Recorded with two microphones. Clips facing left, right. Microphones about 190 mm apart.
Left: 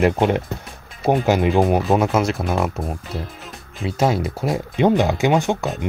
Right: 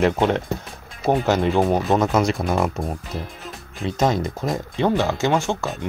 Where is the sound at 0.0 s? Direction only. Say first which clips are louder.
Left 1 dB; 10° left (ahead or behind).